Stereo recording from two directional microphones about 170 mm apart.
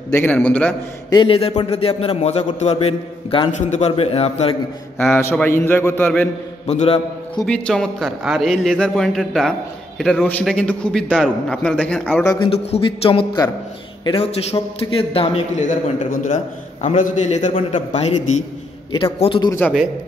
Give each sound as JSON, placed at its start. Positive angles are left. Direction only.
{"t": 0.1, "sound": "a man's voice", "side_deg": 10}
{"t": 1.1, "sound": "a man's voice", "side_deg": 30}
{"t": 4.9, "sound": "a man's voice", "side_deg": 10}
{"t": 6.7, "sound": "a man's voice", "side_deg": 40}
{"t": 7.4, "sound": "a man's voice", "side_deg": 5}
{"t": 12.7, "sound": "a man's voice", "side_deg": 35}
{"t": 19.1, "sound": "a man's voice", "side_deg": 30}